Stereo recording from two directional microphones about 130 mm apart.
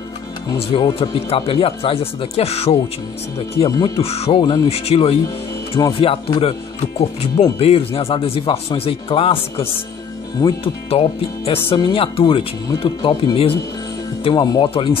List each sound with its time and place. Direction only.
0.7 s speech: 40° left (ahead or behind)
1.3 s speech: 45° left (ahead or behind)
4.0 s speech: 50° left (ahead or behind)
14.2 s speech: 30° left (ahead or behind)
14.7 s speech: 45° left (ahead or behind)